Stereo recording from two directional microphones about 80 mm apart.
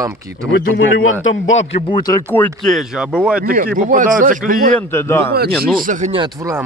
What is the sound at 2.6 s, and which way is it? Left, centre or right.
Speech, centre.